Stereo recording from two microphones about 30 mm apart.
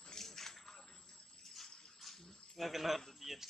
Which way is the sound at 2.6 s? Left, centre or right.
Centre.